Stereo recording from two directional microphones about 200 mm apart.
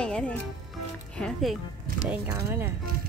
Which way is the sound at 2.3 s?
10° right (ahead or behind).